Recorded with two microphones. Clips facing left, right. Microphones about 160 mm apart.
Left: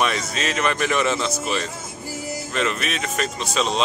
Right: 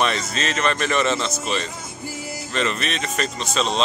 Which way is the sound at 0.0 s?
5° left (ahead or behind).